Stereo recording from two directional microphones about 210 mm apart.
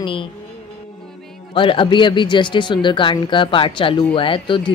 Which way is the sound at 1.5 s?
25° left (ahead or behind).